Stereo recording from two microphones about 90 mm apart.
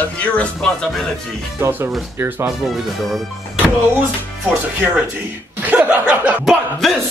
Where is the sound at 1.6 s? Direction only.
25° right (ahead or behind).